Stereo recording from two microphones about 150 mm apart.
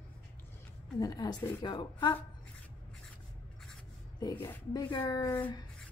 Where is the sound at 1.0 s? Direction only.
25° left (ahead or behind).